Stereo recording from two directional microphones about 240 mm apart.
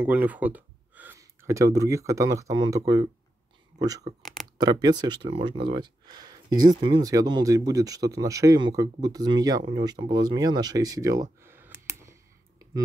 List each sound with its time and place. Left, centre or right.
0.0 s speech: centre
4.2 s a sound: centre
4.6 s speech: centre